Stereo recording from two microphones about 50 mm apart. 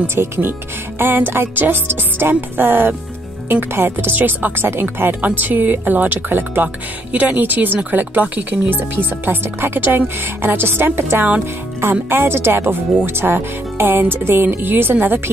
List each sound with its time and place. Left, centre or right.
0.0 s speech: right
5.2 s speech: right
7.1 s speech: right